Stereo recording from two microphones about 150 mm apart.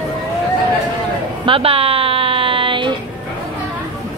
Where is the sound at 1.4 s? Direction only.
40° right (ahead or behind).